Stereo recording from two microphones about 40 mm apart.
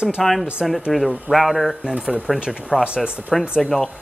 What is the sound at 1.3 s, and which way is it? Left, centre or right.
Speech, centre.